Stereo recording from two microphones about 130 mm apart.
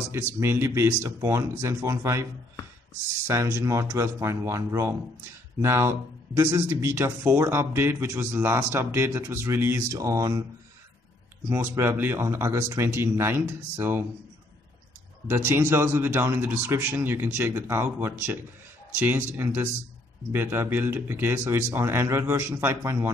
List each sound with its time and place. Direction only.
0.3 s speech: 20° right (ahead or behind)
3.3 s speech: 20° right (ahead or behind)
11.4 s speech: 20° right (ahead or behind)
15.2 s a man's voice: 20° right (ahead or behind)